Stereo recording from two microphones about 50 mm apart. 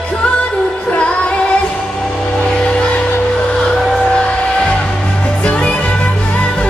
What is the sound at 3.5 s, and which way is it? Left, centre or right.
Vehicle, centre.